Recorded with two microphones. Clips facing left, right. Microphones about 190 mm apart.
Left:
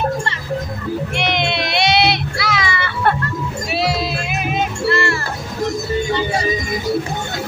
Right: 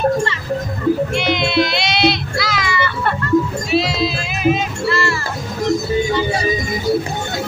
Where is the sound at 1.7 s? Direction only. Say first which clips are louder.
Left 1 dB; 60° left (ahead or behind).